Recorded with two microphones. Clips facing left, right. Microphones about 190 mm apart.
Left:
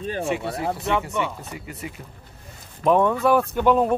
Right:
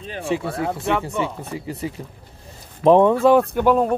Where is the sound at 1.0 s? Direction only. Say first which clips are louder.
Right 2 dB; 30° right (ahead or behind).